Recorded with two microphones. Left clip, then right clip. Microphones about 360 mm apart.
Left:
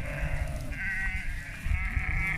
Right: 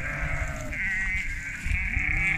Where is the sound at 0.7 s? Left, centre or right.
Left.